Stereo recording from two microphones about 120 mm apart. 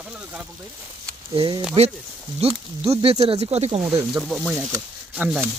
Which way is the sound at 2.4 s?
60° right (ahead or behind).